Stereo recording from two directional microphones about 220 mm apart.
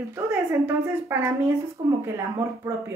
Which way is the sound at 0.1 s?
10° right (ahead or behind).